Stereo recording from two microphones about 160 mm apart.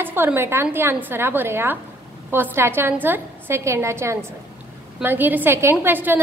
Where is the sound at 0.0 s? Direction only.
15° right (ahead or behind).